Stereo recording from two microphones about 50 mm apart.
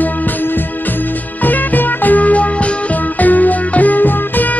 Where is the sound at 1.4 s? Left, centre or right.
Left.